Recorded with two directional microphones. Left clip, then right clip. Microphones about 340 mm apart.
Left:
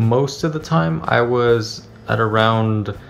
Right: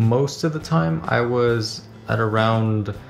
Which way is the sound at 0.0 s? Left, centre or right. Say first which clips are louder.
Left 3 dB; centre.